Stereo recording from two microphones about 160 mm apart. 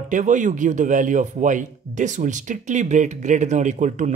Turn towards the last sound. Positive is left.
turn(degrees=-50)  # may be behind; listen again after turning